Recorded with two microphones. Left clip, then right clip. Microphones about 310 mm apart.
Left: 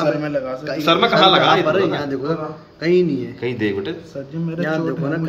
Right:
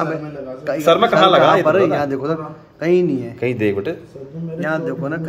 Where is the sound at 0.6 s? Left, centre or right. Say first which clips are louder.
Right 4 dB; right.